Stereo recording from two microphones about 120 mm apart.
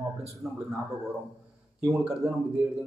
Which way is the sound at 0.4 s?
Centre (ahead or behind).